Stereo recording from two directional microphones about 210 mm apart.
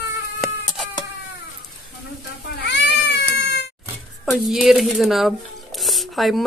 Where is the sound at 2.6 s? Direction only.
55° left (ahead or behind).